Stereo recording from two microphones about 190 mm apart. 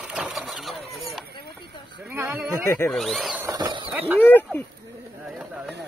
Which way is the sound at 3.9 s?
10° right (ahead or behind).